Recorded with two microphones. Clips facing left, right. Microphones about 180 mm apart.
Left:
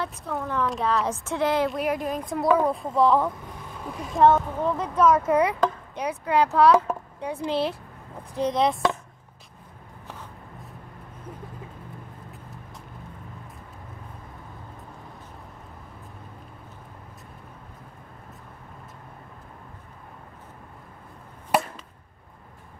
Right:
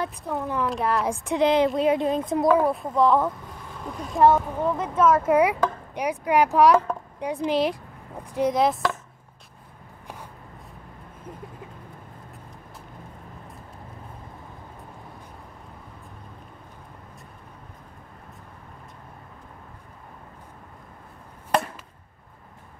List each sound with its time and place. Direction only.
0.4 s speech: 5° right (ahead or behind); by 2.4 s 25° right (ahead or behind)
2.5 s speech: centre (ahead or behind)